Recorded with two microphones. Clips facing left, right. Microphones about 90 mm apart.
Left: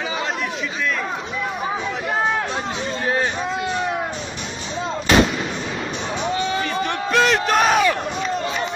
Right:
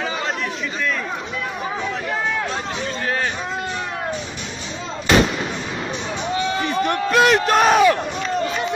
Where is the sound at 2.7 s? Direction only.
20° left (ahead or behind).